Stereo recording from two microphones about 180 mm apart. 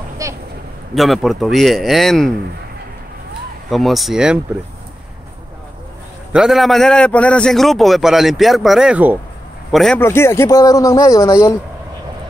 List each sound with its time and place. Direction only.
0.2 s goose: 20° right (ahead or behind)
0.9 s a man's voice: centre (ahead or behind)
3.7 s a man's voice: centre (ahead or behind)
6.3 s a man's voice: centre (ahead or behind)
9.9 s a man's voice: 15° left (ahead or behind)